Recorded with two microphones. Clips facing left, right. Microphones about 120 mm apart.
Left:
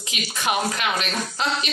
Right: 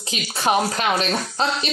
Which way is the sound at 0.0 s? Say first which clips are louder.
Right 4 dB; 35° right (ahead or behind).